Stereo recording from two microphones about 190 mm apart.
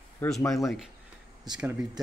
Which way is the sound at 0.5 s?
Centre (ahead or behind).